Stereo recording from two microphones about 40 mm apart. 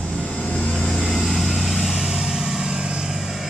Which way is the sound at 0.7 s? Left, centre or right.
Centre.